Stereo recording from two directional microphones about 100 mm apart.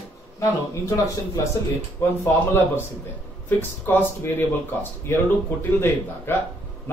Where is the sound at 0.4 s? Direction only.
30° left (ahead or behind).